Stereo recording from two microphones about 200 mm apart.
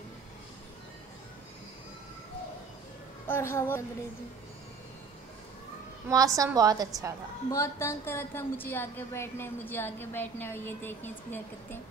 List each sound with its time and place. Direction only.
3.3 s a woman's voice: 15° left (ahead or behind)
6.0 s a woman's voice: 15° right (ahead or behind)
7.5 s a woman's voice: 15° left (ahead or behind)